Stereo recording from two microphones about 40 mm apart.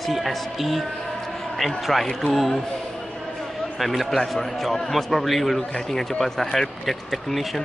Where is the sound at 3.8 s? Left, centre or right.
Centre.